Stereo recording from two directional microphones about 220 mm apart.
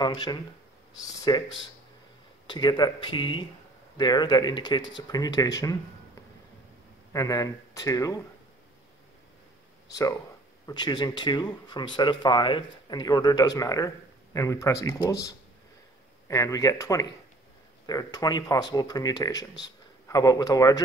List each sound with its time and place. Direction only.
0.0 s speech: 20° left (ahead or behind)
7.1 s speech: 15° left (ahead or behind)
10.7 s speech: 20° left (ahead or behind)